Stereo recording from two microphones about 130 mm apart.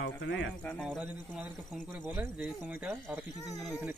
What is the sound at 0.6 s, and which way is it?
Speech, 5° left (ahead or behind).